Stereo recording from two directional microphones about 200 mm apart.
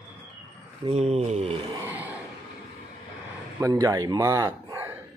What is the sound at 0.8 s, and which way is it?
Speech, 30° right (ahead or behind).